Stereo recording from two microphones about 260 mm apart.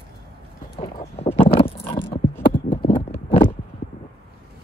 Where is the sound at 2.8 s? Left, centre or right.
Left.